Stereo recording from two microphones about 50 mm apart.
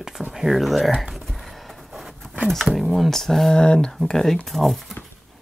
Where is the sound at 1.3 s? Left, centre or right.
Centre.